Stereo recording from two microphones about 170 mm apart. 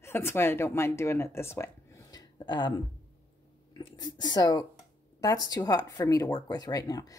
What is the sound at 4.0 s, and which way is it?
Speech, 25° left (ahead or behind).